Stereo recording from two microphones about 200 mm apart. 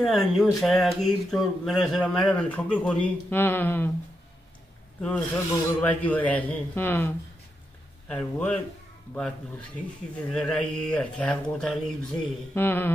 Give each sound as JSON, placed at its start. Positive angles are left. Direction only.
{"t": 0.0, "sound": "a man's voice", "side_deg": 0}
{"t": 5.0, "sound": "a man's voice", "side_deg": 5}